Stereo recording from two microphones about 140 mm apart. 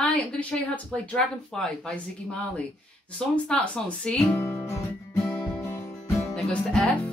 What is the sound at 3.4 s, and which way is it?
Speech, 5° left (ahead or behind).